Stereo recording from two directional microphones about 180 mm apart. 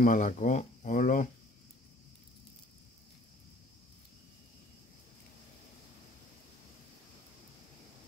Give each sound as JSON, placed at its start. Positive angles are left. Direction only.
{"t": 0.0, "sound": "speech", "side_deg": 45}